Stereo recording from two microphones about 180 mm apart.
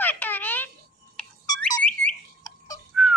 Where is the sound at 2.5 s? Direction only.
20° left (ahead or behind).